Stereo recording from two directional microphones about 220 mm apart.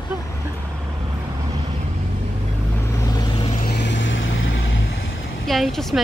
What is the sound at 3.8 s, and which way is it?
Vehicle, 55° left (ahead or behind).